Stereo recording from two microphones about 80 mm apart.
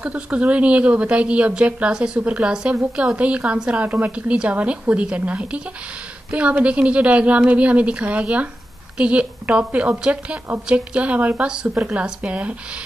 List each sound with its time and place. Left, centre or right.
0.0 s a woman's voice: centre